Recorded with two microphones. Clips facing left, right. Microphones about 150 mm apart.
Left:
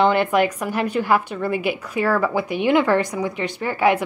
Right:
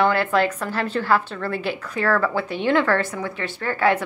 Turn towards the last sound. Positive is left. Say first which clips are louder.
# left 2 dB
turn(degrees=15)  # may be behind; listen again after turning